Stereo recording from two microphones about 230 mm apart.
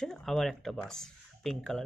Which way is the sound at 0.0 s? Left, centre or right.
Centre.